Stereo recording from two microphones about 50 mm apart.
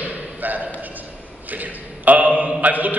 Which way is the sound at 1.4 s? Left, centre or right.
Right.